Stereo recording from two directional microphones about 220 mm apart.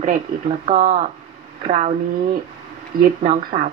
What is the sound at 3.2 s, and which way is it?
Speech, 30° right (ahead or behind).